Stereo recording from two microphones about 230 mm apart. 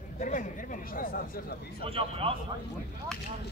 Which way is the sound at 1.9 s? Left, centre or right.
Right.